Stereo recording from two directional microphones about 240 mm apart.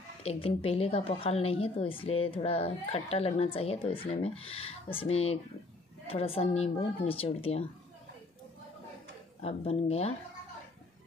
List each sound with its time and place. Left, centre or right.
0.2 s a woman's voice: left
9.4 s a woman's voice: left